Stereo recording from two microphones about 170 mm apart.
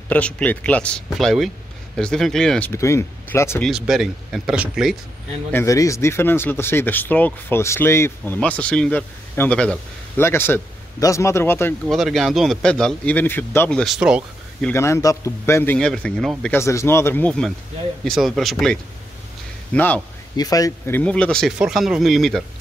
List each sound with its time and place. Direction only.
0.1 s speech: 10° left (ahead or behind)
2.7 s speech: 15° left (ahead or behind)
3.6 s speech: centre (ahead or behind)
5.5 s speech: 15° left (ahead or behind)
11.8 s speech: centre (ahead or behind)
14.7 s speech: 15° left (ahead or behind)
16.5 s speech: 15° left (ahead or behind)
20.3 s speech: 20° left (ahead or behind); by 22.4 s centre (ahead or behind)